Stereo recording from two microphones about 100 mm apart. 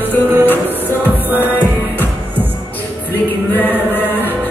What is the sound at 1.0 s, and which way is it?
Music, 20° right (ahead or behind).